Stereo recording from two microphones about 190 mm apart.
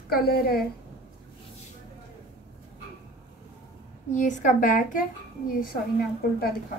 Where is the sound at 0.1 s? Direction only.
55° left (ahead or behind).